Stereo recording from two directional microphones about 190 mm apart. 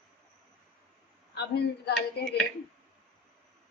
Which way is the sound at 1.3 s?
60° left (ahead or behind).